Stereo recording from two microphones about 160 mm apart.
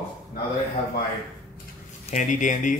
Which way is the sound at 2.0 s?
50° left (ahead or behind).